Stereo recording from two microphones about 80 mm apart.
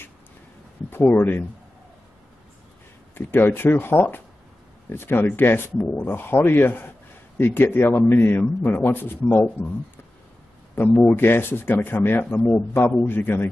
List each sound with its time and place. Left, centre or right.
0.8 s speech: left
3.2 s speech: left
10.7 s speech: left